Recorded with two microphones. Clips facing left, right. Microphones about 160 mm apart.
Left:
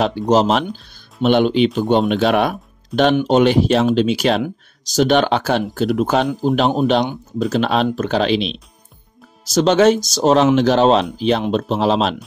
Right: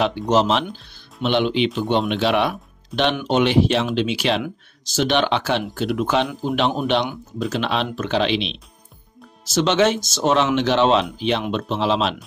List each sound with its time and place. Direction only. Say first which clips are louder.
0.0 s speech: left 3 dB; 40° left (ahead or behind)
2.9 s speech: left 5 dB; centre (ahead or behind)
3.3 s speech: left 4 dB; 40° left (ahead or behind)